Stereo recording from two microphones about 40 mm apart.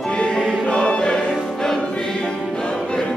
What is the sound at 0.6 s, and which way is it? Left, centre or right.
Choir, left.